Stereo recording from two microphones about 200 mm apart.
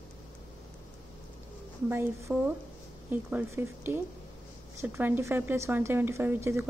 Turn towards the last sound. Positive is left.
turn(degrees=-15)  # may be behind; listen again after turning